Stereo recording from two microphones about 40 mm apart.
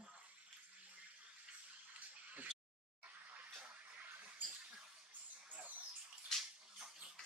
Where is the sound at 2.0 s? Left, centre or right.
Right.